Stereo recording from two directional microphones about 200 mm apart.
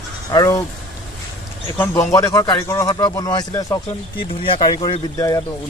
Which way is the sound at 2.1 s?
20° left (ahead or behind).